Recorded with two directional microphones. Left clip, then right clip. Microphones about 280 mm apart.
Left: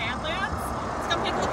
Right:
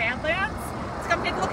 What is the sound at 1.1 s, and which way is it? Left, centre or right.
Speech, left.